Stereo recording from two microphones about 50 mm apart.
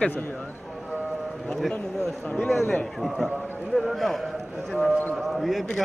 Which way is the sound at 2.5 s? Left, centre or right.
Centre.